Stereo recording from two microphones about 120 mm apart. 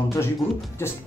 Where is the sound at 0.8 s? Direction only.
20° left (ahead or behind).